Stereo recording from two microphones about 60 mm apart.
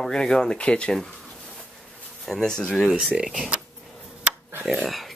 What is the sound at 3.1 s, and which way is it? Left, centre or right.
Speech, centre.